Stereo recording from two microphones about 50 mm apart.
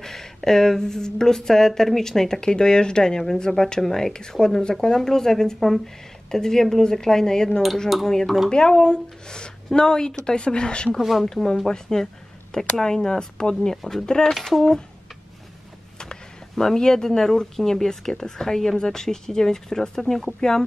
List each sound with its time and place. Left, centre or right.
0.0 s speech: centre
11.0 s speech: centre
11.2 s speech: centre
14.3 s speech: centre
16.0 s speech: centre